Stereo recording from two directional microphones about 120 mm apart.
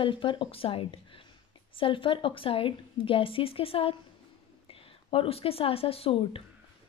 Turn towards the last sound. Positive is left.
turn(degrees=50)  # may be behind; listen again after turning